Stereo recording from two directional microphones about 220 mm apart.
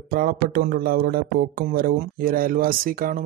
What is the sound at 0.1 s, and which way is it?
Speech, 40° right (ahead or behind).